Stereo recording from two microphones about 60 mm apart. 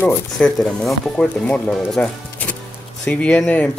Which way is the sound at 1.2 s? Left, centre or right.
Left.